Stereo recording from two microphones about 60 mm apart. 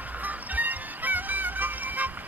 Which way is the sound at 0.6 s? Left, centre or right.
Right.